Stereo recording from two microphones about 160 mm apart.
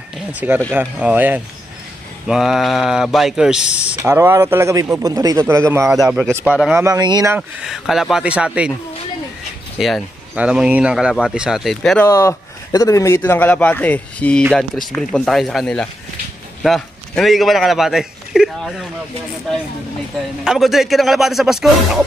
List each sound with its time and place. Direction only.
0.3 s speech: 10° right (ahead or behind)
5.9 s a man's voice: 5° right (ahead or behind)
6.8 s speech: 25° right (ahead or behind)
7.3 s a man's voice: 5° right (ahead or behind)
9.8 s a man's voice: centre (ahead or behind)
12.1 s a man's voice: 20° left (ahead or behind); by 18.9 s 5° right (ahead or behind)
20.4 s a man's voice: centre (ahead or behind)